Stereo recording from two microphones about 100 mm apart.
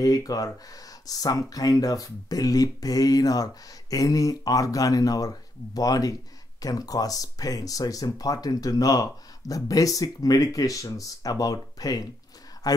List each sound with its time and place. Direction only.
0.0 s speech: 40° left (ahead or behind)